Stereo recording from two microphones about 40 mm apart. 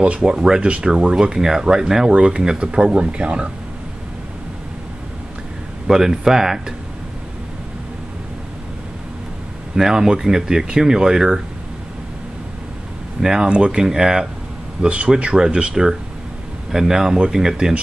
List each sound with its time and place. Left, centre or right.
0.0 s speech: right
1.1 s speech: centre
5.9 s speech: centre
9.8 s speech: centre
13.2 s speech: centre
14.8 s speech: right
15.7 s speech: centre